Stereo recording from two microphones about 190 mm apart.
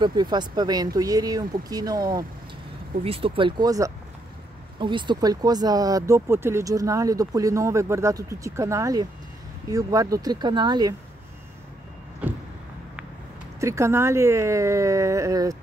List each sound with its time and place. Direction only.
0.0 s speech: 25° right (ahead or behind)
12.2 s vehicle: 5° right (ahead or behind)
13.6 s speech: 15° right (ahead or behind)